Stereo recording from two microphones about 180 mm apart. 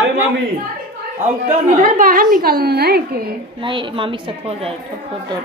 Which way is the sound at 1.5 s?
50° right (ahead or behind).